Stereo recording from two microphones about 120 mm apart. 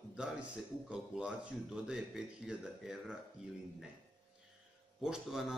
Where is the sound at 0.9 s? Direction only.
5° right (ahead or behind).